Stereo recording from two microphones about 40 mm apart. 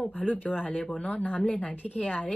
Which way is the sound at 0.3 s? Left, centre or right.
Left.